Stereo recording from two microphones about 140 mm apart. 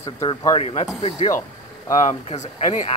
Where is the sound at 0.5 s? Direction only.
50° left (ahead or behind).